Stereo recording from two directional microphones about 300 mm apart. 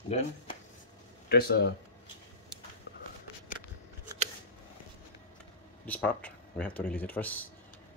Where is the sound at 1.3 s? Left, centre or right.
Left.